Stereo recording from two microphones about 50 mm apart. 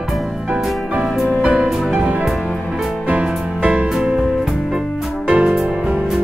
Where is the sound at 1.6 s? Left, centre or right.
Centre.